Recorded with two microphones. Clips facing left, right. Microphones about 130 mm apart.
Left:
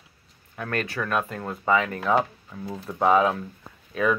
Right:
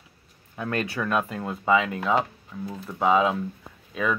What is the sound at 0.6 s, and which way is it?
Speech, 20° right (ahead or behind).